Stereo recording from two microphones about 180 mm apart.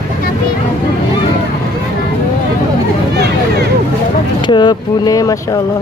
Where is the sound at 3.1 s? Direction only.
65° right (ahead or behind).